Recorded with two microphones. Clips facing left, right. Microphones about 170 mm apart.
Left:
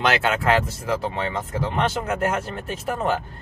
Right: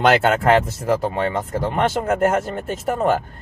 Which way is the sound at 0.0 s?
50° right (ahead or behind).